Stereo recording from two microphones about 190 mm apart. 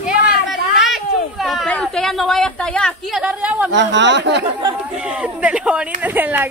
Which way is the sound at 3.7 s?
70° right (ahead or behind).